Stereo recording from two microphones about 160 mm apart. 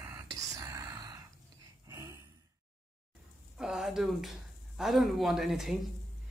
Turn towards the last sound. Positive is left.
turn(degrees=0)  # may be behind; listen again after turning